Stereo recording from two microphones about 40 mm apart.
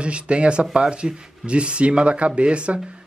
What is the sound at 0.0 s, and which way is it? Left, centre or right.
A man's voice, right.